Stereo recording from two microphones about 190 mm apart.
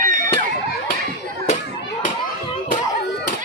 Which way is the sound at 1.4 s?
40° left (ahead or behind).